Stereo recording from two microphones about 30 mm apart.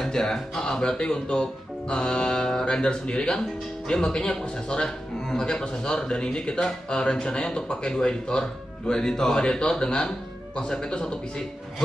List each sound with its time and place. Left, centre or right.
0.0 s speech: centre